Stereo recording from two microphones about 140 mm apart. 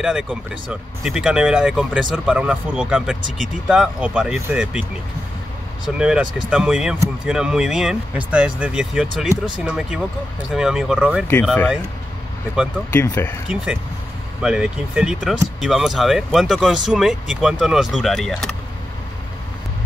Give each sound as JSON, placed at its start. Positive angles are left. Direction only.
{"t": 0.0, "sound": "speech", "side_deg": -5}
{"t": 5.9, "sound": "speech", "side_deg": -5}
{"t": 12.9, "sound": "speech", "side_deg": 15}
{"t": 14.4, "sound": "speech", "side_deg": -5}